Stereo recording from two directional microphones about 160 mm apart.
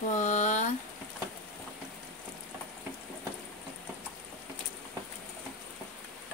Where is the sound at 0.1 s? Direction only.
45° left (ahead or behind).